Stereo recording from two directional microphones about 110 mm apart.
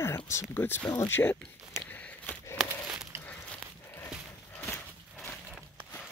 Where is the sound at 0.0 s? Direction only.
25° left (ahead or behind).